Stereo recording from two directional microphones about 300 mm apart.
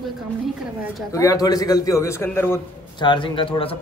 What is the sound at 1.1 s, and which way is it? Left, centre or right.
A man's voice, centre.